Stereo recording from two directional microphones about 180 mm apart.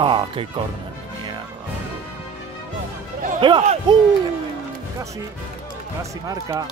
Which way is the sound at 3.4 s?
25° right (ahead or behind).